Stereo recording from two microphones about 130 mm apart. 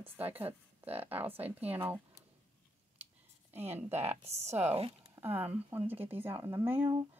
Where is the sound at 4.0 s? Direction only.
55° right (ahead or behind).